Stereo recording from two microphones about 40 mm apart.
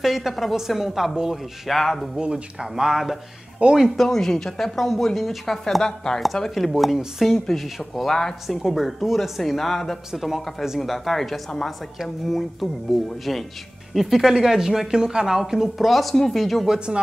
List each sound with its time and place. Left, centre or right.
0.0 s speech: centre
1.7 s speech: centre
2.1 s speech: right
3.9 s speech: centre
6.5 s speech: centre
8.1 s speech: centre
8.6 s speech: centre
15.9 s speech: centre
16.6 s speech: centre